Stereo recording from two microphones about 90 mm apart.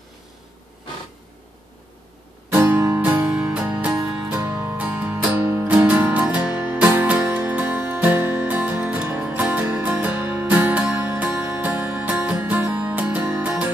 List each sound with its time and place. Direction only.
2.5 s music: 25° right (ahead or behind)
5.7 s music: 20° right (ahead or behind)